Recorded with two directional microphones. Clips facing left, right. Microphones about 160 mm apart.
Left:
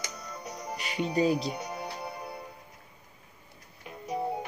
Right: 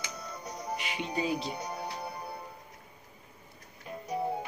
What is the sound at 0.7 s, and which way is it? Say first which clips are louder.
Music: left 7 dB; 40° left (ahead or behind).